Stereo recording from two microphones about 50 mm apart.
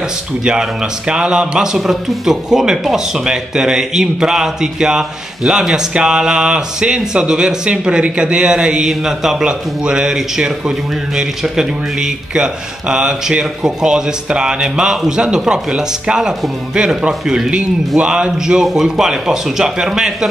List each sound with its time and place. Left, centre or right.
0.5 s speech: centre
18.7 s speech: centre